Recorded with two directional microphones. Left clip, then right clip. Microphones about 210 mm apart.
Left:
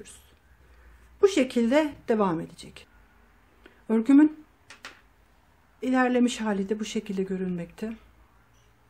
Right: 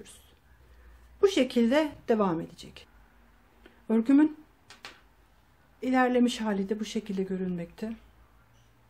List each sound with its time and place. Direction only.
1.2 s speech: 10° left (ahead or behind)
3.6 s a sound: 10° left (ahead or behind)
5.8 s speech: 10° left (ahead or behind)